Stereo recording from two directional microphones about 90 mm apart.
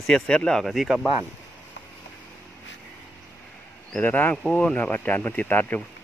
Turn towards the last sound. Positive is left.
turn(degrees=15)  # may be behind; listen again after turning